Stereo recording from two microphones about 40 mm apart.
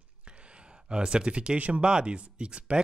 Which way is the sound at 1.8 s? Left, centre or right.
Right.